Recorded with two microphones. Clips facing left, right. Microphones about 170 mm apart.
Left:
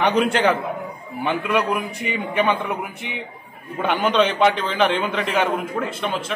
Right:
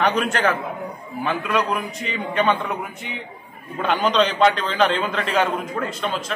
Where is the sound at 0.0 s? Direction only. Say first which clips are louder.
Left 2 dB; 15° left (ahead or behind).